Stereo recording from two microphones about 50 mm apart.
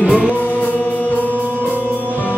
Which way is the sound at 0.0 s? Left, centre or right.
Centre.